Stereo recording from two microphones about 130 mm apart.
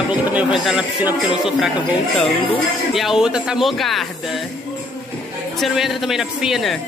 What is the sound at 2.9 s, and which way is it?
Music, centre (ahead or behind).